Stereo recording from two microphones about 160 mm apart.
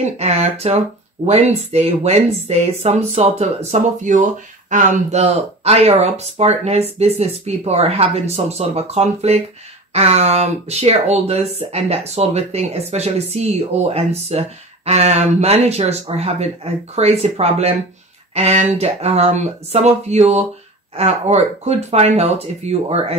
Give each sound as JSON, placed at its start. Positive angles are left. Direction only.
{"t": 0.0, "sound": "speech", "side_deg": -40}